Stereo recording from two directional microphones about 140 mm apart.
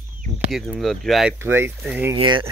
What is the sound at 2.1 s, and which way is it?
Speech, 35° right (ahead or behind).